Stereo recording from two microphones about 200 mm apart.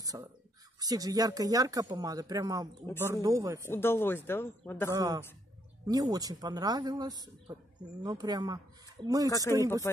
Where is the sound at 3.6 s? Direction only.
10° left (ahead or behind).